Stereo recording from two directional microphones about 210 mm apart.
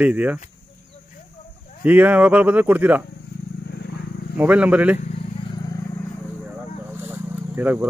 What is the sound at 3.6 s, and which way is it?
Vehicle, 50° left (ahead or behind).